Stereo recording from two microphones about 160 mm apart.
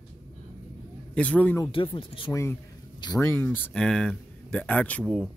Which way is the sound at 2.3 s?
15° left (ahead or behind).